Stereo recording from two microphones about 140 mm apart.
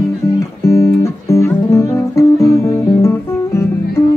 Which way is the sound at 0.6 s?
20° left (ahead or behind).